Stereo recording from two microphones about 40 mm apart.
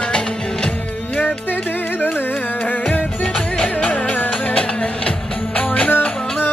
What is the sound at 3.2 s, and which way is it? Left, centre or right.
Music, left.